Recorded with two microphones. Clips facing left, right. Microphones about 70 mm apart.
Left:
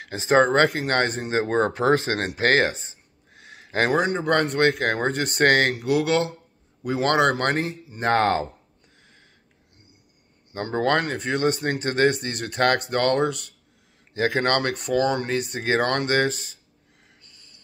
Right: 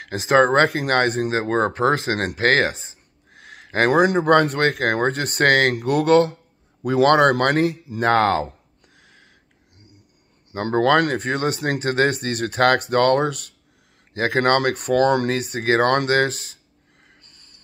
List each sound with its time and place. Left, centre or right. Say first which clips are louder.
0.0 s speech: right 2 dB; right
3.3 s a sound: right 3 dB; right
4.0 s speech: right 7 dB; right
4.3 s speech: right 4 dB; right
8.9 s a sound: right 4 dB; right
10.5 s speech: right 5 dB; right
17.2 s music: right 1 dB; right